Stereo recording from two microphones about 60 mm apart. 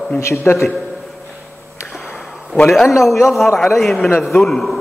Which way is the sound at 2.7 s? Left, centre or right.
Centre.